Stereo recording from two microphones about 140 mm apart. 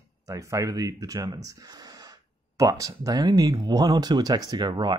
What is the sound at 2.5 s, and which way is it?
Speech, 25° right (ahead or behind).